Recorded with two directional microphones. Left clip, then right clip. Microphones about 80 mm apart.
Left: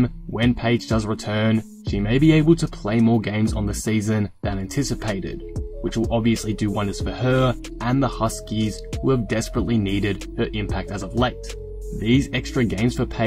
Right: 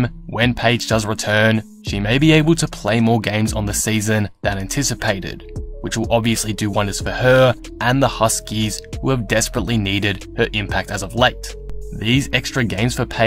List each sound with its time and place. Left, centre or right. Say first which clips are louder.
0.0 s speech: right 4 dB; right